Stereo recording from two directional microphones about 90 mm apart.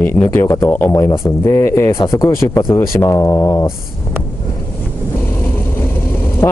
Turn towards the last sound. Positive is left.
turn(degrees=20)  # may be behind; listen again after turning